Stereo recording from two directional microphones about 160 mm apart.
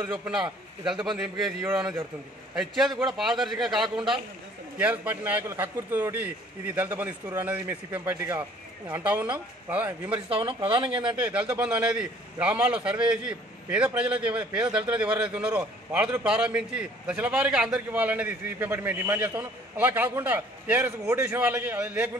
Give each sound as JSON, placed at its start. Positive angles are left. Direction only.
{"t": 0.1, "sound": "a man's voice", "side_deg": -10}
{"t": 10.3, "sound": "speech", "side_deg": -35}
{"t": 11.1, "sound": "a man's voice", "side_deg": -10}